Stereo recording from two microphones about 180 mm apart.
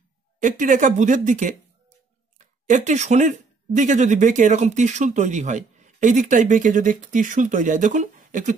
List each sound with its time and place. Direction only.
0.4 s speech: 45° right (ahead or behind)